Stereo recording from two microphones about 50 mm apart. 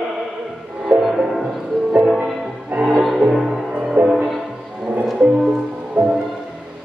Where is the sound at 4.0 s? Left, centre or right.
Right.